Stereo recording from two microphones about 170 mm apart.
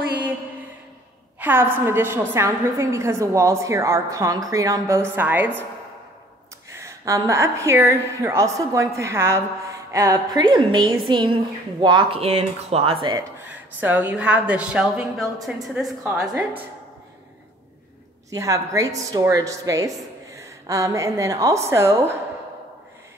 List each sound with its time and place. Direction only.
1.4 s a woman's voice: 10° right (ahead or behind)
6.7 s a woman's voice: 15° right (ahead or behind)
13.5 s a woman's voice: 10° right (ahead or behind)
18.3 s a woman's voice: 20° right (ahead or behind)